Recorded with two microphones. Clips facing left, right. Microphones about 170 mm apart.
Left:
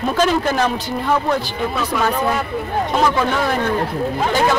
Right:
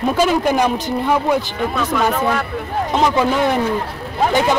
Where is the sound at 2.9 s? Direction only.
20° right (ahead or behind).